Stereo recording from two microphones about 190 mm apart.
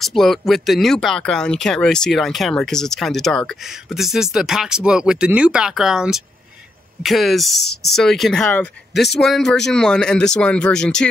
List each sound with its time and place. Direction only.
0.0 s speech: centre (ahead or behind)
7.5 s speech: 60° left (ahead or behind)
7.9 s speech: centre (ahead or behind)